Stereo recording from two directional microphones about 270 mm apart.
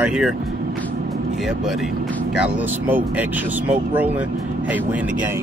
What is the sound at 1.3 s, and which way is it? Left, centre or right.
Speech, centre.